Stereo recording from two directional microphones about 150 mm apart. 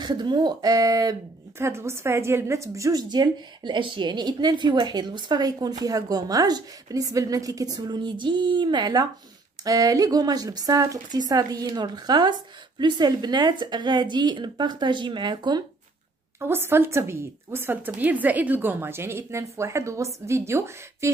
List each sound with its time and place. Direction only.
0.0 s a woman's voice: 30° right (ahead or behind)
16.3 s a woman's voice: 15° right (ahead or behind)